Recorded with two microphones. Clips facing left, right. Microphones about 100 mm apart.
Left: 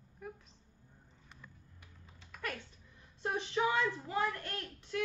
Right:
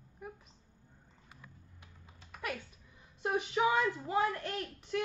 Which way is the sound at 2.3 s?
10° right (ahead or behind).